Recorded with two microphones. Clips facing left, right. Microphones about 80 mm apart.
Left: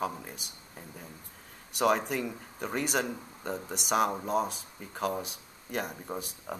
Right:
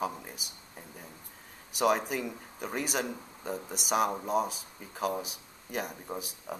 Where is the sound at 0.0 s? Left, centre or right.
Centre.